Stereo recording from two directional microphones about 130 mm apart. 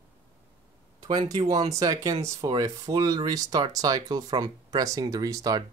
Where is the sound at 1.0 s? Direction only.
35° right (ahead or behind).